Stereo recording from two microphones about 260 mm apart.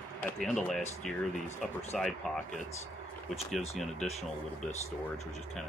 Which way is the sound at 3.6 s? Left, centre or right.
Left.